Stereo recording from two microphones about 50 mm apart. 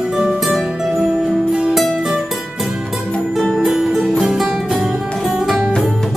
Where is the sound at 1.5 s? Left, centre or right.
Centre.